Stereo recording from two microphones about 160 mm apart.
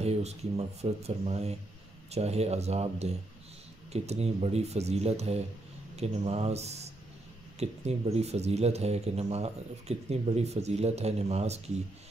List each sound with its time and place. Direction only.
0.0 s speech: 40° right (ahead or behind)